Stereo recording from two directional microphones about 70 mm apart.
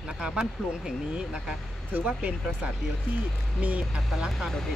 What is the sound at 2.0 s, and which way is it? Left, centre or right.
Speech, centre.